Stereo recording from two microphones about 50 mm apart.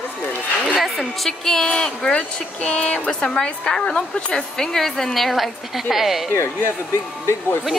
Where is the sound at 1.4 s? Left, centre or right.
Centre.